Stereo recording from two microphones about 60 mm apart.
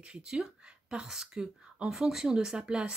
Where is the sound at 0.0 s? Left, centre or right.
Centre.